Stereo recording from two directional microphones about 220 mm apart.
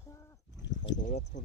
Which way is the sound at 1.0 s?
30° left (ahead or behind).